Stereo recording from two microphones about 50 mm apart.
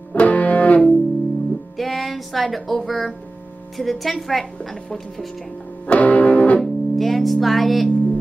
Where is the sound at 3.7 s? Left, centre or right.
Centre.